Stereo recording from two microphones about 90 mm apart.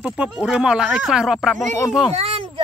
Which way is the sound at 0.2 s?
10° right (ahead or behind).